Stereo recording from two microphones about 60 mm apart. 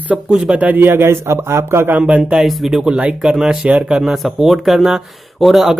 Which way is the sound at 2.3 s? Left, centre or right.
Centre.